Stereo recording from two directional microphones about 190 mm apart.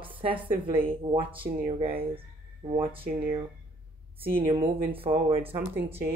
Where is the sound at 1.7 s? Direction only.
30° right (ahead or behind).